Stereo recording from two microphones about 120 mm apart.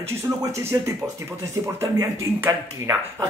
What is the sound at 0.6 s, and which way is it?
Speech, 25° right (ahead or behind).